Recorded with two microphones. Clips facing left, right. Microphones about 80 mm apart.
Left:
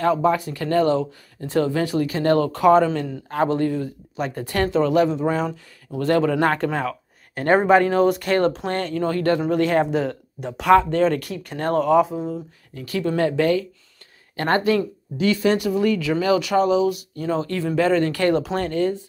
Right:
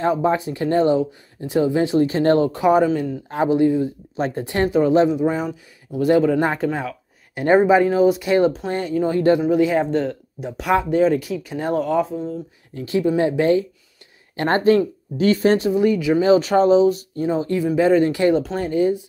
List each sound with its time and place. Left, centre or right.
0.0 s speech: right
5.2 s speech: centre
9.4 s speech: centre
12.1 s speech: left
12.7 s speech: right
13.0 s speech: centre; by 15.7 s right
15.7 s speech: right
17.3 s speech: centre